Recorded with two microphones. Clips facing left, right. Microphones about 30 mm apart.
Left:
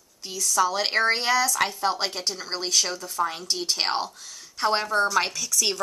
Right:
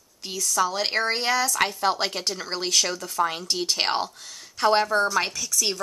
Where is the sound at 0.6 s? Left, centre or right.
Centre.